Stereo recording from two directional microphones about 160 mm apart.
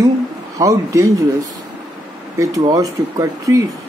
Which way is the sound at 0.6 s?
20° right (ahead or behind).